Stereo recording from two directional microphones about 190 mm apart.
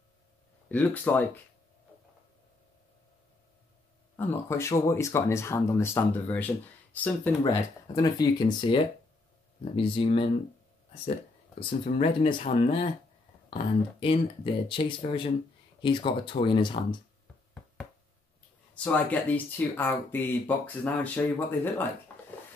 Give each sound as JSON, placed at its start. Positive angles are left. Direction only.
{"t": 0.7, "sound": "speech", "side_deg": 10}
{"t": 4.2, "sound": "speech", "side_deg": 10}
{"t": 7.4, "sound": "speech", "side_deg": 20}
{"t": 11.8, "sound": "speech", "side_deg": 30}
{"t": 18.8, "sound": "speech", "side_deg": 5}